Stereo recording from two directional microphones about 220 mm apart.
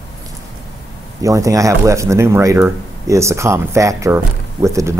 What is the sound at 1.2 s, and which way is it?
Speech, 15° right (ahead or behind).